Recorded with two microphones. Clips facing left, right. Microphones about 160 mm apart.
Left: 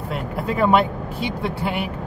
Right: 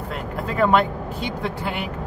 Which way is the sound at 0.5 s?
10° left (ahead or behind).